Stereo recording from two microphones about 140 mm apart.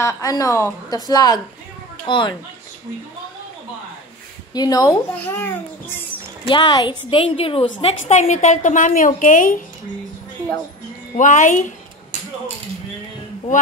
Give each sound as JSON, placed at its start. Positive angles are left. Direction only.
{"t": 0.0, "sound": "a woman's voice", "side_deg": 25}
{"t": 4.6, "sound": "a woman's voice", "side_deg": 25}
{"t": 5.1, "sound": "a child's voice", "side_deg": 15}
{"t": 6.5, "sound": "a woman's voice", "side_deg": 30}
{"t": 7.8, "sound": "a woman's voice", "side_deg": 55}
{"t": 11.1, "sound": "a woman's voice", "side_deg": 65}